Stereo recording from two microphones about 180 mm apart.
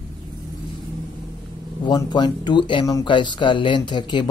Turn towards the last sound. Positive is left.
turn(degrees=25)  # may be behind; listen again after turning